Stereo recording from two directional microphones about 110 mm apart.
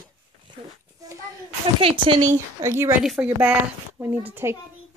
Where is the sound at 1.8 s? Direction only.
50° right (ahead or behind).